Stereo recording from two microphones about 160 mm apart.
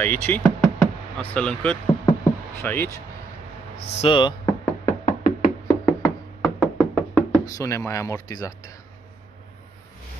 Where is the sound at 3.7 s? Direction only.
90° left.